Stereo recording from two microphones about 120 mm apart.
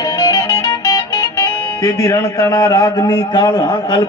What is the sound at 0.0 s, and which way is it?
Music, 30° left (ahead or behind).